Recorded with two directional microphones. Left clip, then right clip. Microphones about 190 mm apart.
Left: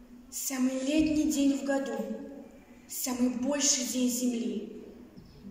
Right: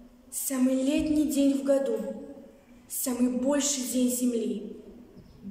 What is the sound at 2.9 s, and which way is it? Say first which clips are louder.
A woman's voice: right 3 dB; 15° right (ahead or behind).